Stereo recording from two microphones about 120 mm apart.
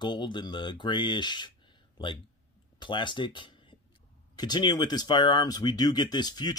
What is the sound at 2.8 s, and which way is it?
Speech, 40° left (ahead or behind).